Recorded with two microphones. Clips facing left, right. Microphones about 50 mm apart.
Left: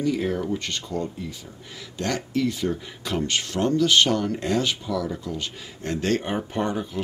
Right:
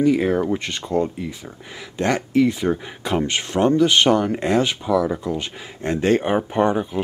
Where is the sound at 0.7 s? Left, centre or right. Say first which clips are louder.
Right 7 dB; right.